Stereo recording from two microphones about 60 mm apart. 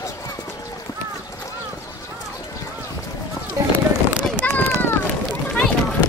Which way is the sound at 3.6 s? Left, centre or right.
Right.